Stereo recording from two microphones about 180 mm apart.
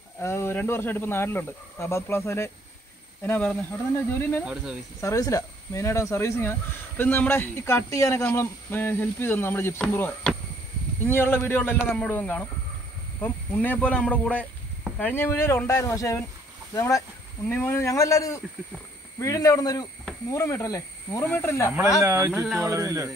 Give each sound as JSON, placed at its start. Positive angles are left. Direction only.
{"t": 0.2, "sound": "speech", "side_deg": 15}
{"t": 22.0, "sound": "speech", "side_deg": -15}
{"t": 22.3, "sound": "speech", "side_deg": 5}
{"t": 22.7, "sound": "speech", "side_deg": -15}